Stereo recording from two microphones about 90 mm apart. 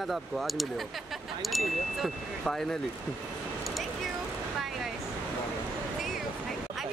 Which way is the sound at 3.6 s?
Centre (ahead or behind).